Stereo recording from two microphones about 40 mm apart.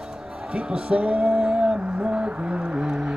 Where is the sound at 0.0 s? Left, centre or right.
Centre.